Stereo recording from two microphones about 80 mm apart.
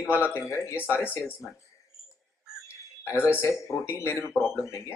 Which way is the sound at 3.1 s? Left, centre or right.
Centre.